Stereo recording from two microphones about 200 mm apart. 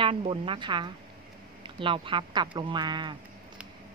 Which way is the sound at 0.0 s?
25° right (ahead or behind).